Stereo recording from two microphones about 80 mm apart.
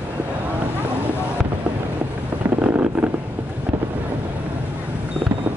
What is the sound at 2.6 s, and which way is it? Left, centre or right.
Wind noise, centre.